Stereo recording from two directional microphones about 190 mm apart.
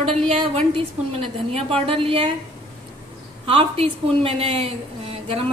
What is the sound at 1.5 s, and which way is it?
Speech, 30° right (ahead or behind).